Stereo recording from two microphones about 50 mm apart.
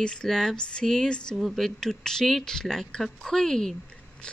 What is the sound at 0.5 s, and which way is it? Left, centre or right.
Speech, centre.